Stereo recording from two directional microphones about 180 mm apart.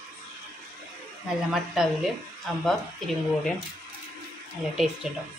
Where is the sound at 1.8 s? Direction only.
Centre (ahead or behind).